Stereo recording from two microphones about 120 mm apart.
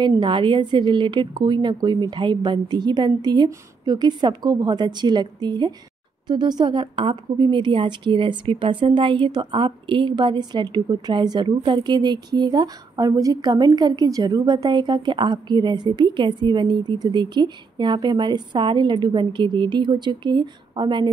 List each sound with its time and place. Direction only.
0.0 s a woman's voice: 40° right (ahead or behind)